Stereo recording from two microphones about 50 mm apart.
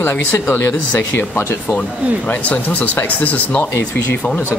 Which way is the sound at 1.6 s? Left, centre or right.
Left.